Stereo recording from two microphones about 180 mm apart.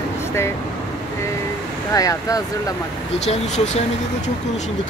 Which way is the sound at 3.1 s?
40° left (ahead or behind).